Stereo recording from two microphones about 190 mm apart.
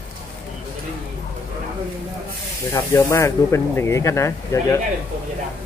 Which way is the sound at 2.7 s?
15° left (ahead or behind).